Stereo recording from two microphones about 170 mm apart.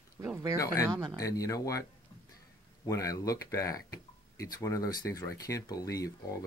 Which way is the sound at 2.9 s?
20° left (ahead or behind).